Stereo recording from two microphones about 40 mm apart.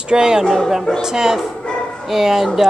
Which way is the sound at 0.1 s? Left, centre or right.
Centre.